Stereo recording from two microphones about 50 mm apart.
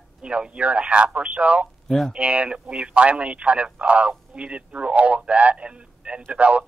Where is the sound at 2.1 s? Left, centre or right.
Right.